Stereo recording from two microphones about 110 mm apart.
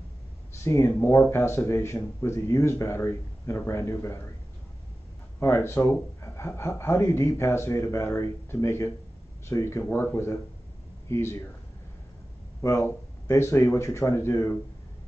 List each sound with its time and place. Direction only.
0.7 s speech: 25° left (ahead or behind)
5.4 s speech: 25° left (ahead or behind)
12.6 s speech: 25° left (ahead or behind)